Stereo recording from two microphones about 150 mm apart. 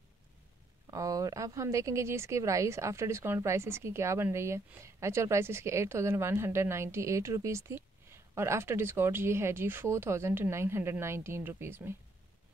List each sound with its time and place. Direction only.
0.8 s speech: 25° right (ahead or behind)